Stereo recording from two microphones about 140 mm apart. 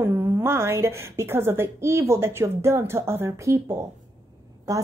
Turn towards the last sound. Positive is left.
turn(degrees=-25)  # may be behind; listen again after turning